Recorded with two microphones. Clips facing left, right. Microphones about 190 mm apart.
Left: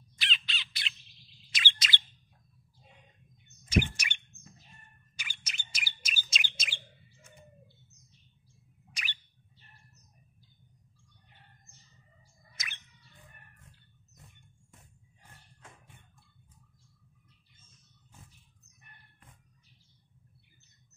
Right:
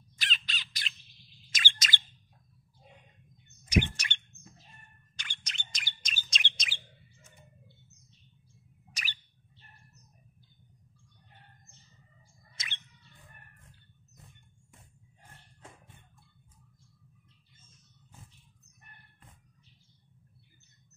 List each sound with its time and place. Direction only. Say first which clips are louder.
0.2 s crow: even; 45° right (ahead or behind)
1.5 s bird: even; 45° right (ahead or behind)
3.8 s chirp: right 1 dB; 10° left (ahead or behind)
5.1 s bird: even; 5° left (ahead or behind)
8.9 s bird: even; 40° right (ahead or behind)
12.5 s bird: even; 30° right (ahead or behind)